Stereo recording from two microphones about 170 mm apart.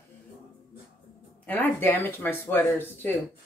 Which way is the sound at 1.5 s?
10° left (ahead or behind).